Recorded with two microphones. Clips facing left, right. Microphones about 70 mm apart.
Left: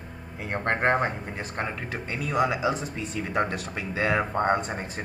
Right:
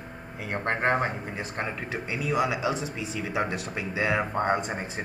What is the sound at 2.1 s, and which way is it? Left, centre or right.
Speech, centre.